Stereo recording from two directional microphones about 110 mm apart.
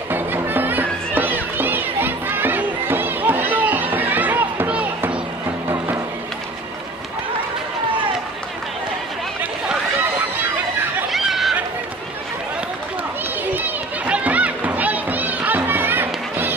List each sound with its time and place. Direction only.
0.1 s music: 20° right (ahead or behind)
9.4 s chatter: 15° right (ahead or behind)
11.1 s a sound: centre (ahead or behind)
13.5 s run: 15° right (ahead or behind)